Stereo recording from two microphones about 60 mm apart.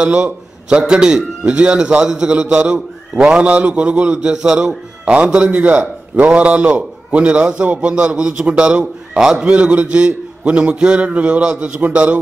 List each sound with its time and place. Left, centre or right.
0.0 s a man's voice: centre